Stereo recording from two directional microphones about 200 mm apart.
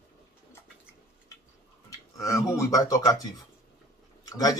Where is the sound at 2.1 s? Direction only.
15° left (ahead or behind).